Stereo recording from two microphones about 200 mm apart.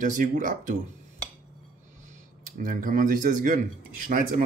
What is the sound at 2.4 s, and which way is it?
Speech, 45° right (ahead or behind).